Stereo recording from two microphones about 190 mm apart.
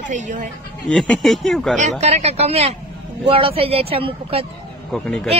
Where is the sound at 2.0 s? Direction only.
35° right (ahead or behind).